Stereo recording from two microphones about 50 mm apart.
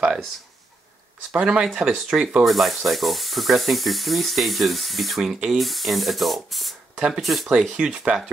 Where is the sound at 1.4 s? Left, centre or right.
Centre.